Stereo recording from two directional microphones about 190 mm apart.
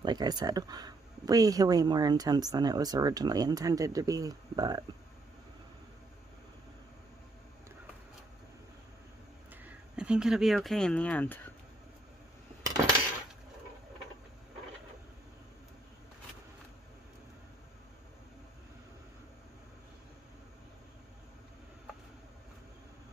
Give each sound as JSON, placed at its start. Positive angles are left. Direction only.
{"t": 0.0, "sound": "speech", "side_deg": -20}
{"t": 9.5, "sound": "speech", "side_deg": -5}